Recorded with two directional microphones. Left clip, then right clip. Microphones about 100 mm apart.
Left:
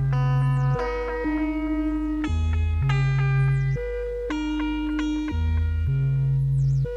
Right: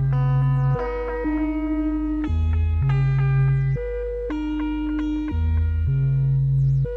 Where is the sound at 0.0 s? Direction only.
35° right (ahead or behind).